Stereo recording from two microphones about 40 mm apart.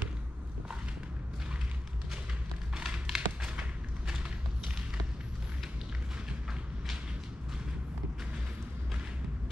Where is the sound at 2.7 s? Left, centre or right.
Centre.